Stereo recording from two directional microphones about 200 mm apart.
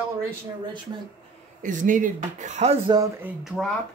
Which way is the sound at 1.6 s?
40° right (ahead or behind).